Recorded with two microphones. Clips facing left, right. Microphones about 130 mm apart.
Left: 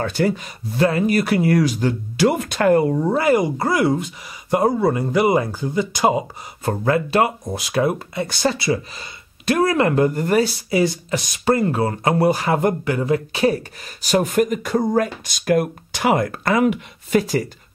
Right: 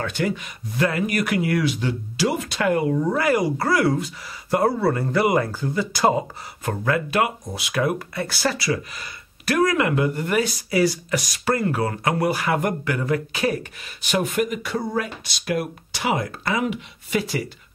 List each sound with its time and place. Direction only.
0.0 s speech: 35° left (ahead or behind); by 6.2 s 15° left (ahead or behind)
6.6 s speech: 30° left (ahead or behind)
10.7 s speech: 25° left (ahead or behind); by 17.5 s 45° left (ahead or behind)